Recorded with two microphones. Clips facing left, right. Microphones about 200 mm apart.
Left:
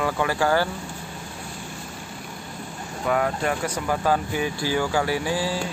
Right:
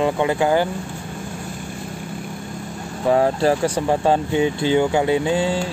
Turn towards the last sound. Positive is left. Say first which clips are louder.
# right 6 dB
turn(degrees=-25)  # may be behind; listen again after turning